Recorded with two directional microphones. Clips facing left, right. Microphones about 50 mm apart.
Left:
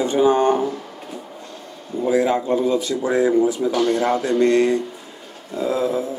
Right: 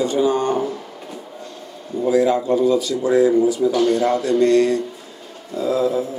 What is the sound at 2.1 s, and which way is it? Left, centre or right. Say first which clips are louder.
Speech: right 2 dB; left.